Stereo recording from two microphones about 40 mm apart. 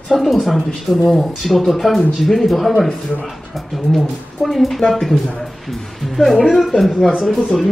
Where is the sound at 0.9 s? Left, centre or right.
Centre.